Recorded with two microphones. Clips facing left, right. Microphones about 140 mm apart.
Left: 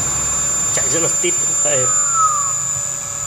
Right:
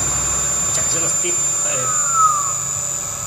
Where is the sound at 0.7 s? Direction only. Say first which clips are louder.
Left 9 dB; 70° left (ahead or behind).